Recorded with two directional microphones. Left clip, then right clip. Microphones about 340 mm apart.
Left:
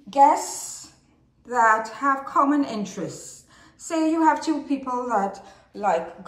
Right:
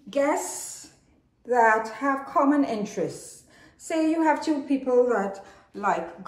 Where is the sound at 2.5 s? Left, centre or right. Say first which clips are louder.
Even; centre.